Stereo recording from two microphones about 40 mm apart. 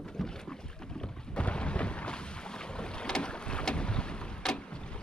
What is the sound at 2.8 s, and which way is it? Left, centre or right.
Boat, left.